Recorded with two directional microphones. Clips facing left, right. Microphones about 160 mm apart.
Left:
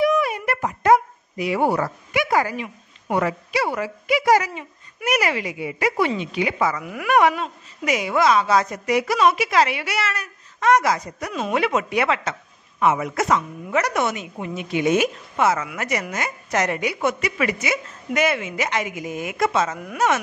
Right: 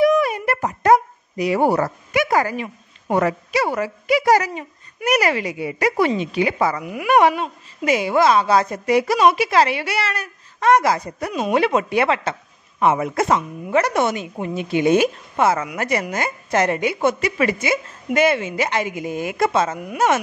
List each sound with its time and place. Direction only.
0.0 s a sound: 40° right (ahead or behind)
3.2 s speech: 45° right (ahead or behind)
6.8 s speech: 20° right (ahead or behind)
7.2 s speech: 30° right (ahead or behind)